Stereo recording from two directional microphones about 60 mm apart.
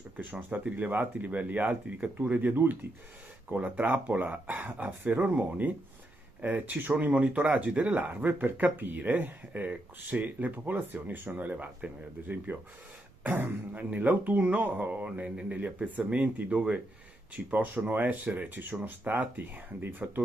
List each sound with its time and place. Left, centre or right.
0.2 s speech: right
2.5 s speech: right
3.5 s speech: right
15.0 s speech: centre
17.5 s speech: right